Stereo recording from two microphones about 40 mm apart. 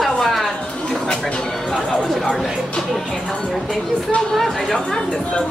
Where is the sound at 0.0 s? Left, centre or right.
Centre.